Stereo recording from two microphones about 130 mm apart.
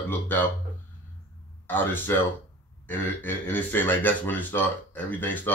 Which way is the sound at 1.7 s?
15° left (ahead or behind).